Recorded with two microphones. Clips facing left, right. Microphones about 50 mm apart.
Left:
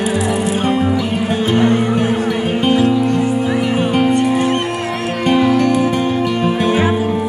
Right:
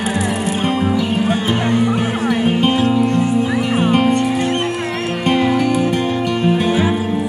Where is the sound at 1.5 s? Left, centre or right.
Left.